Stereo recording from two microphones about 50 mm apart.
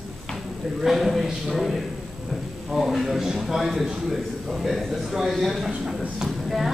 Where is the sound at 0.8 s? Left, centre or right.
Centre.